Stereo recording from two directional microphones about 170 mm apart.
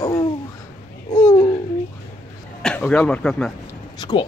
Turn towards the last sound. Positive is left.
turn(degrees=25)  # may be behind; listen again after turning